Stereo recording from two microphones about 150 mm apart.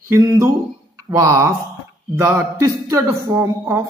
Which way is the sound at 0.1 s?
20° right (ahead or behind).